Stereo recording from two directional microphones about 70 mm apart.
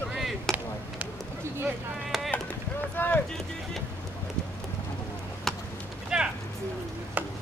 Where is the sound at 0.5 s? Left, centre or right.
Centre.